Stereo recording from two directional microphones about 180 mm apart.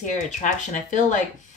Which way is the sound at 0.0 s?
45° left (ahead or behind).